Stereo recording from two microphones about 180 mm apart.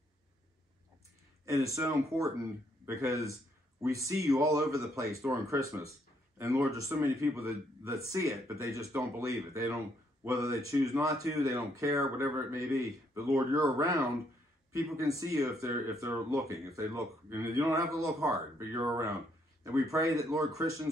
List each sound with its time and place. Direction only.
1.8 s speech: 15° right (ahead or behind)